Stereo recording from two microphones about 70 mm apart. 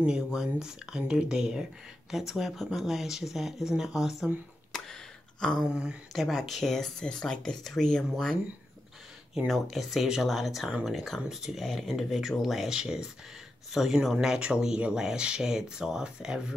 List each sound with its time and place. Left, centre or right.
0.0 s speech: centre
5.4 s a sound: centre
6.1 s speech: centre
9.5 s speech: centre